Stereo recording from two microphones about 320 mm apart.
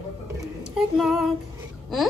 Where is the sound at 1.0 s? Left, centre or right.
Centre.